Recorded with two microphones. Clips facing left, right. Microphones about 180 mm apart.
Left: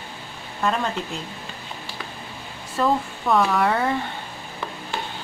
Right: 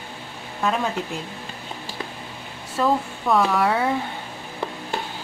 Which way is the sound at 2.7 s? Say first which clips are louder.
Even; centre (ahead or behind).